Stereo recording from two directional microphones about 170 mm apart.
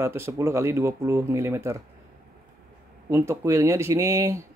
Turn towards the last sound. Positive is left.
turn(degrees=-15)  # may be behind; listen again after turning